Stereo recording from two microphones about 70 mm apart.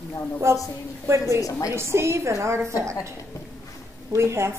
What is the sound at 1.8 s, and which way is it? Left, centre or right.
A woman's voice, right.